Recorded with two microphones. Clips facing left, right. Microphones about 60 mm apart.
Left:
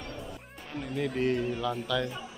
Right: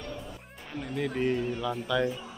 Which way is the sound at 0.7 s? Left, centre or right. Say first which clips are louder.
Even; centre.